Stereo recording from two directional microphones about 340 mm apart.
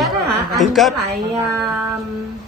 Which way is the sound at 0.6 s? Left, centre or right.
Centre.